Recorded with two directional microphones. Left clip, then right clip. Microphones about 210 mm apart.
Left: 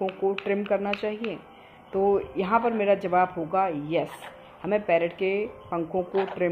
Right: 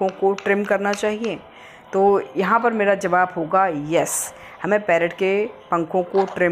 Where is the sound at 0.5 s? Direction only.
15° right (ahead or behind).